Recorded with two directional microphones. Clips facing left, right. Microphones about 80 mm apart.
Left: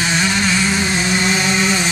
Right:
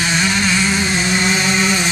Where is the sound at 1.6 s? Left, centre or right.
Left.